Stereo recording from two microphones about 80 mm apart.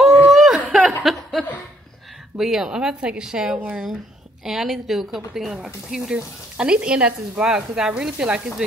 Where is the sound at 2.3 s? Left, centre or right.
Centre.